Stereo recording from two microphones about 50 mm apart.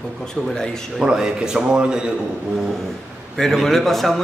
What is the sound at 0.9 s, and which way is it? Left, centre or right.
A man's voice, centre.